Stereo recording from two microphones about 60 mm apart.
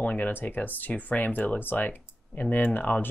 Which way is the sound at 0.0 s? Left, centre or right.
Left.